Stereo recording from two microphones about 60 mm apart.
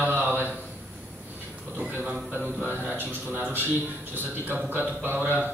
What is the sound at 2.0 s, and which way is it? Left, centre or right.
Speech, centre.